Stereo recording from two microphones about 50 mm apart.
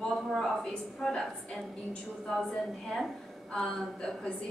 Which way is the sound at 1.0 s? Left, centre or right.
Centre.